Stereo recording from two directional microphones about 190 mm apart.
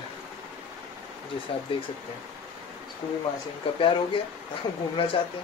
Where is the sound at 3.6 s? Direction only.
30° left (ahead or behind).